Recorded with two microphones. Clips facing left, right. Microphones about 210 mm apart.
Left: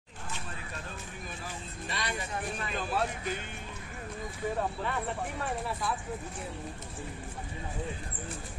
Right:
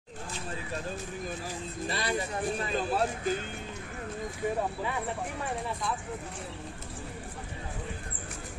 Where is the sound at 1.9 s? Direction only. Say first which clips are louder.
Right 4 dB; 35° right (ahead or behind).